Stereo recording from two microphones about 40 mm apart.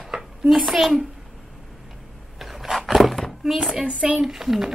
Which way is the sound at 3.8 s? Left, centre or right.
Right.